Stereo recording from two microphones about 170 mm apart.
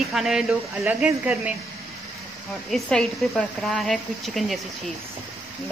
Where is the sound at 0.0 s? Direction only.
Centre (ahead or behind).